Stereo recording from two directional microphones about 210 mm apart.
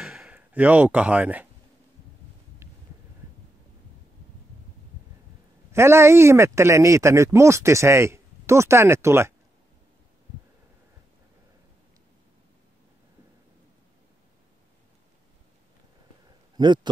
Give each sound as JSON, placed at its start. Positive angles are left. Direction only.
{"t": 0.0, "sound": "a sound", "side_deg": 0}
{"t": 5.7, "sound": "speech", "side_deg": -10}
{"t": 16.5, "sound": "a man's voice", "side_deg": -20}